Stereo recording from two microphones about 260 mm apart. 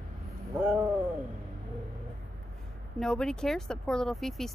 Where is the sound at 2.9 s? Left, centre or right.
Centre.